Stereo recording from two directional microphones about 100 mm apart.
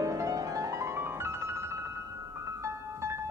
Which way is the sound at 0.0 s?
35° right (ahead or behind).